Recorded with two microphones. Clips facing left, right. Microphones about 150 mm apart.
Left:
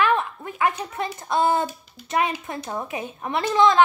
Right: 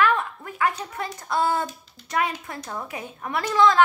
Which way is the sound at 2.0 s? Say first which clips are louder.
Left 2 dB; 25° left (ahead or behind).